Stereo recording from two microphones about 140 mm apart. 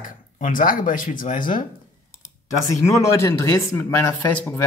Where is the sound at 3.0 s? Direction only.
20° left (ahead or behind).